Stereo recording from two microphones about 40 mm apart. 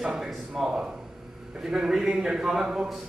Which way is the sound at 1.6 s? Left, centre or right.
Centre.